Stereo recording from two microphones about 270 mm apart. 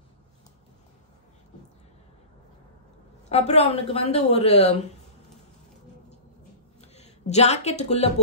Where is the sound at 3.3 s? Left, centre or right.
Left.